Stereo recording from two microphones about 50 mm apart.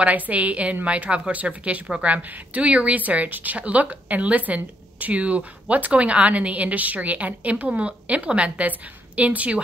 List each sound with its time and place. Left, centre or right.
0.0 s a woman's voice: right